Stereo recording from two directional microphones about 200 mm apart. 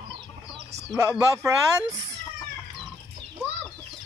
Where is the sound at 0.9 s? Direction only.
15° right (ahead or behind).